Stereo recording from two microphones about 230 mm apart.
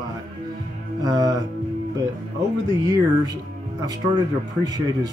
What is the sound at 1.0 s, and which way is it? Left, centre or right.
Speech, centre.